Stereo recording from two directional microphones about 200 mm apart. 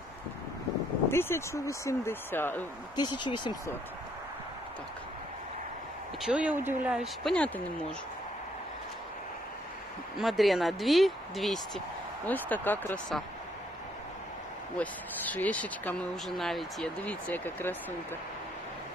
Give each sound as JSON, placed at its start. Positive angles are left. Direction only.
{"t": 1.0, "sound": "speech", "side_deg": 10}
{"t": 3.0, "sound": "speech", "side_deg": 20}
{"t": 6.2, "sound": "speech", "side_deg": -5}
{"t": 10.1, "sound": "speech", "side_deg": 0}
{"t": 14.8, "sound": "speech", "side_deg": 5}